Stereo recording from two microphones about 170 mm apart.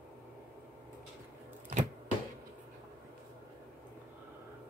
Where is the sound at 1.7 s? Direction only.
45° right (ahead or behind).